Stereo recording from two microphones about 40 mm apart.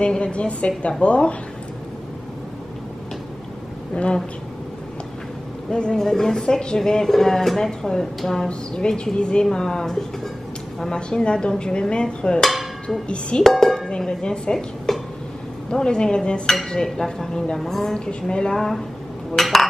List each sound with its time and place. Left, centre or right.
0.0 s dishes: left
1.0 s speech: left
3.9 s dishes: left
5.7 s dishes: left
5.9 s speech: centre
8.5 s speech: left
10.8 s dishes: centre
13.4 s chink: centre
13.8 s dishes: left
16.7 s speech: centre
19.3 s dishes: centre